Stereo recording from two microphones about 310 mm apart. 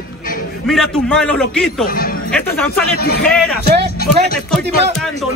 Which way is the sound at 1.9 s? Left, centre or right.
Left.